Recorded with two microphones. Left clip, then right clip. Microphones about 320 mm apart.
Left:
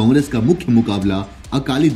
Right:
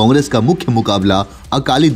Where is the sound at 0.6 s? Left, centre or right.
Right.